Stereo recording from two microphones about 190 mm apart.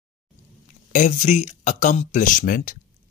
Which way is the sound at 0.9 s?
40° left (ahead or behind).